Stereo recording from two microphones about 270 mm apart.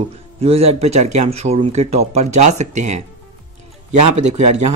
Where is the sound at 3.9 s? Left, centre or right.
Right.